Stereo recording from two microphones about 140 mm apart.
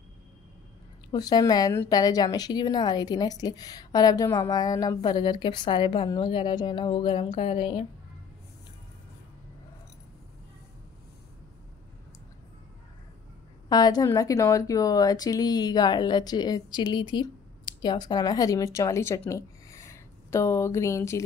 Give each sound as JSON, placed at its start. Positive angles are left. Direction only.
{"t": 1.1, "sound": "a woman's voice", "side_deg": 25}
{"t": 13.7, "sound": "a woman's voice", "side_deg": 30}